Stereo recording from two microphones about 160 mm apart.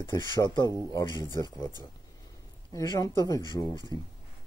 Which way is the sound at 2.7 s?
25° left (ahead or behind).